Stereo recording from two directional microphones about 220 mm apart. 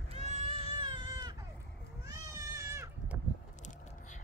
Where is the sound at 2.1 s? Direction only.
15° right (ahead or behind).